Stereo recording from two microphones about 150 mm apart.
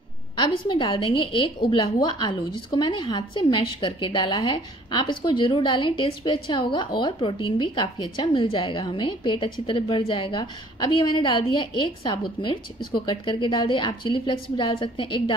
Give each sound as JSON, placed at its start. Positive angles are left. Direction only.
{"t": 0.4, "sound": "a woman's voice", "side_deg": 30}